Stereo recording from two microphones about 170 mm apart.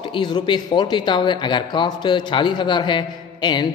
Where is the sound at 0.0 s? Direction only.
25° left (ahead or behind).